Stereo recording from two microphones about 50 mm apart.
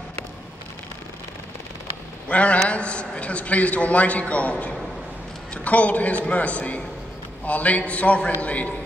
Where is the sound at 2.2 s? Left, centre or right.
Left.